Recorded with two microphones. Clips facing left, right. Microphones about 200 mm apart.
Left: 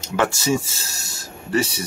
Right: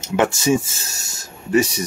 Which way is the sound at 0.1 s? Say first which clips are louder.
Right 3 dB; 20° right (ahead or behind).